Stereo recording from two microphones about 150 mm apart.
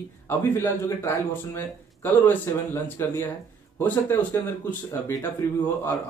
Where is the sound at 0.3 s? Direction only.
15° left (ahead or behind).